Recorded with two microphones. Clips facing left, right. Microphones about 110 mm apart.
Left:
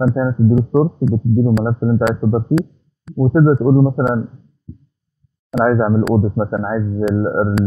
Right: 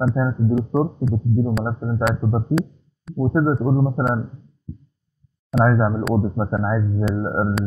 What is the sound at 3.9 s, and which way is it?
Speech, 5° left (ahead or behind).